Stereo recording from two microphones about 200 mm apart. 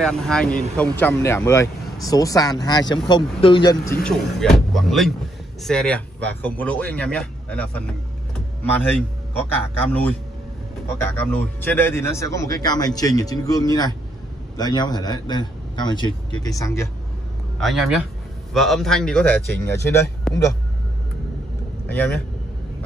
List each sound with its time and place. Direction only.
0.0 s speech: 5° left (ahead or behind); by 3.7 s 25° left (ahead or behind)
4.0 s speech: centre (ahead or behind)
10.9 s a man's voice: 10° left (ahead or behind)
17.6 s speech: centre (ahead or behind)
21.8 s speech: 10° left (ahead or behind)